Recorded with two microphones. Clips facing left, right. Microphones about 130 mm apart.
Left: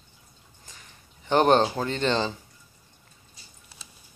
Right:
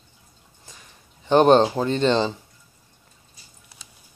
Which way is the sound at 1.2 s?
20° right (ahead or behind).